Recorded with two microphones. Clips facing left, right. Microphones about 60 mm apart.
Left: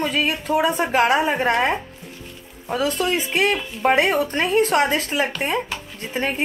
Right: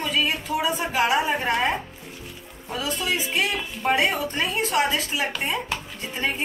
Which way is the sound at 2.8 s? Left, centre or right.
Left.